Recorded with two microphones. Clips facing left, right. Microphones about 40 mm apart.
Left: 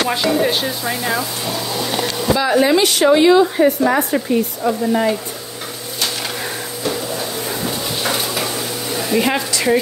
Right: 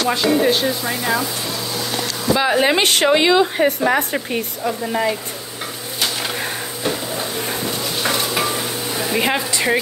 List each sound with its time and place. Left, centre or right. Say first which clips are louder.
0.1 s speech: right 1 dB; centre
2.3 s speech: left 1 dB; right
2.6 s a woman's voice: left 2 dB; right
3.9 s a woman's voice: left 3 dB; right
8.9 s a sound: left 3 dB; centre